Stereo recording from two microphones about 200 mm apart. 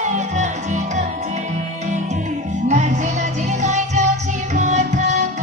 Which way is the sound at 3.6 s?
35° right (ahead or behind).